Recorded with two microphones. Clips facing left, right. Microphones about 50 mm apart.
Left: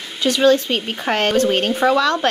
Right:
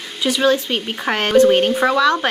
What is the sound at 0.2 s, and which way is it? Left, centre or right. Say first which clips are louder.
Speech: left 2 dB; centre.